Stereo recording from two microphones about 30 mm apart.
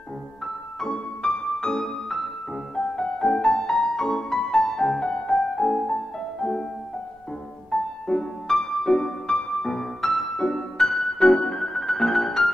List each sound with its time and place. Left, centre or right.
0.9 s music: left
1.7 s music: centre
3.0 s music: left
3.6 s music: centre; by 5.3 s left
5.3 s music: centre
7.7 s music: centre
9.7 s music: centre
10.4 s music: centre